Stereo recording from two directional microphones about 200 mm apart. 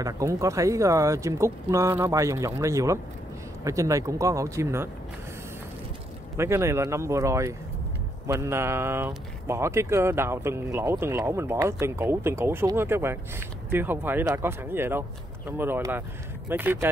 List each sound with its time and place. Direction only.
0.0 s speech: 15° right (ahead or behind)
6.3 s speech: 15° right (ahead or behind)